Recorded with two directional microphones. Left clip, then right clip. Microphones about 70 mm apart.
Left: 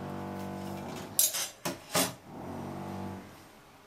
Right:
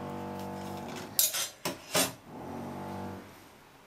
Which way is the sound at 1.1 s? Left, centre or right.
Centre.